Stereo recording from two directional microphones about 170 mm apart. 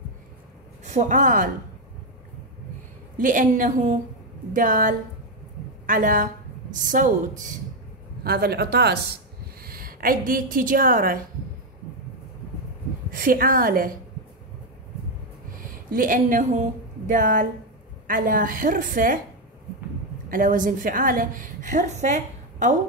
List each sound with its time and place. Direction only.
0.8 s a woman's voice: 45° right (ahead or behind)
3.2 s a woman's voice: 50° right (ahead or behind)
8.2 s speech: 65° right (ahead or behind)
13.1 s a woman's voice: 55° right (ahead or behind)
15.5 s a woman's voice: 55° right (ahead or behind)
20.2 s a woman's voice: 55° right (ahead or behind)